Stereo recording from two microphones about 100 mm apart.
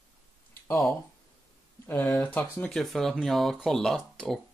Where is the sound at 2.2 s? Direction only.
15° left (ahead or behind).